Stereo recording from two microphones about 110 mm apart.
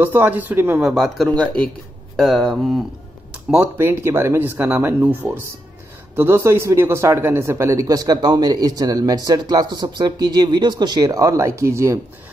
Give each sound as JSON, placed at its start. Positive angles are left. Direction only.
{"t": 0.0, "sound": "speech", "side_deg": -15}
{"t": 0.8, "sound": "speech", "side_deg": 0}
{"t": 3.4, "sound": "speech", "side_deg": -15}